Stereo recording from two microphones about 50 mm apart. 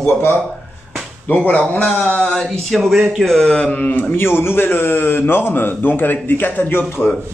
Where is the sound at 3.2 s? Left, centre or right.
Centre.